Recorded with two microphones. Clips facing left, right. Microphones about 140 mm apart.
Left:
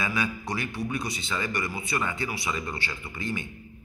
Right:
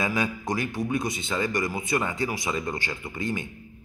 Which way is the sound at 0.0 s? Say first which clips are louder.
Right 3 dB; 45° right (ahead or behind).